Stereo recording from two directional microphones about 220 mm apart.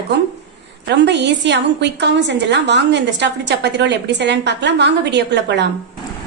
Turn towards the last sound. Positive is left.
turn(degrees=-50)  # may be behind; listen again after turning